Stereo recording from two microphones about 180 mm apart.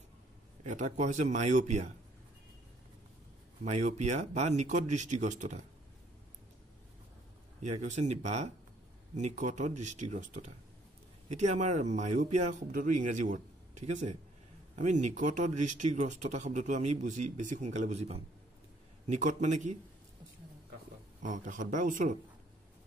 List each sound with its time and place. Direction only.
0.7 s a man's voice: 45° right (ahead or behind)
3.6 s speech: 40° right (ahead or behind)
7.6 s a man's voice: 40° right (ahead or behind)
21.2 s a man's voice: 45° right (ahead or behind)